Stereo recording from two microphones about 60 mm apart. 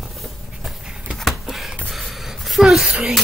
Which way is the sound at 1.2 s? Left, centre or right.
Centre.